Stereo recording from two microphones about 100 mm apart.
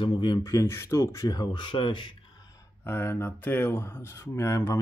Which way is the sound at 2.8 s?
25° left (ahead or behind).